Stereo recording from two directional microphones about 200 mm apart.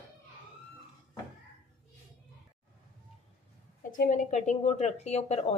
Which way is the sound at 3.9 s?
40° left (ahead or behind).